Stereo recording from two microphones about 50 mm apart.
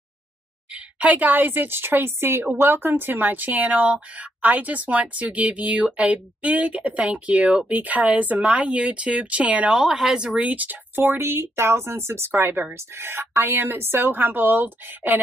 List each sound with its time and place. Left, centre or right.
0.9 s a woman's voice: right
9.7 s speech: centre; by 11.1 s right
11.1 s speech: right